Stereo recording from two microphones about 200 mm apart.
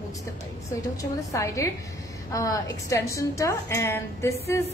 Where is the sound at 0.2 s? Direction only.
15° left (ahead or behind).